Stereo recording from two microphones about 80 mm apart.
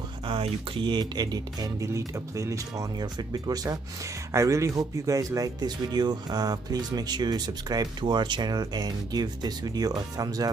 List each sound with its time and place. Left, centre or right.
0.3 s speech: right
1.8 s speech: right
3.2 s speech: right
4.3 s speech: right